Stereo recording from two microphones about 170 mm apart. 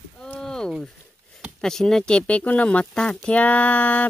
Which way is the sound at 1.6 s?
5° left (ahead or behind).